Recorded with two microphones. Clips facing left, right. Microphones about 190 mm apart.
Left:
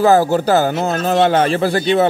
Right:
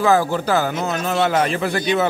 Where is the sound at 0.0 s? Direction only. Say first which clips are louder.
Left 5 dB; 35° left (ahead or behind).